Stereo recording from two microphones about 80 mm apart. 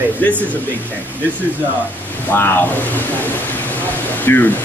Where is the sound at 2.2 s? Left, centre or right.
Left.